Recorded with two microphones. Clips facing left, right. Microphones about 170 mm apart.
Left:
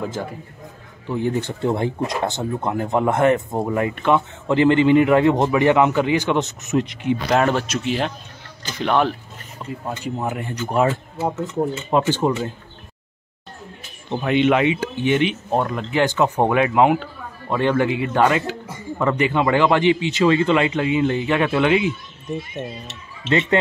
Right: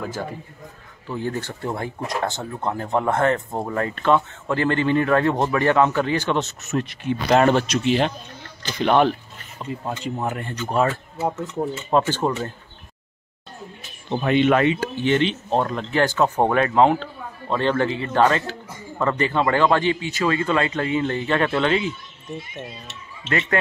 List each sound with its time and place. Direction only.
0.0 s speech: 15° left (ahead or behind)
7.2 s speech: centre (ahead or behind)
12.1 s speech: 10° left (ahead or behind)
14.3 s speech: 15° left (ahead or behind)
23.2 s speech: 25° left (ahead or behind)